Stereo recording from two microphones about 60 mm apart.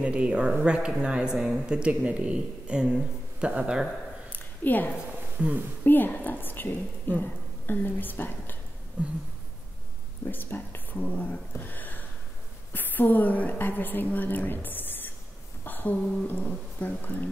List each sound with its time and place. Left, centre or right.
0.0 s speech: centre
4.3 s a sound: left
5.4 s speech: right
5.9 s a woman's voice: left
9.0 s speech: centre
10.2 s a woman's voice: left